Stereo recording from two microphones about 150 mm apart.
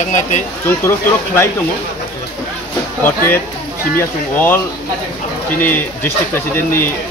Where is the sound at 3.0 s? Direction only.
15° left (ahead or behind).